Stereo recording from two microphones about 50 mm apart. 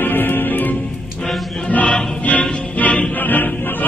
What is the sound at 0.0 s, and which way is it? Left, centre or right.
Music, left.